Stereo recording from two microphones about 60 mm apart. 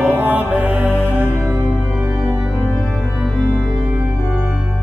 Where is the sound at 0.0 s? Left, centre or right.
Right.